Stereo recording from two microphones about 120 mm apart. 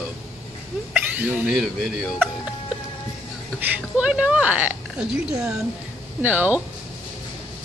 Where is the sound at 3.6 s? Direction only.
10° right (ahead or behind).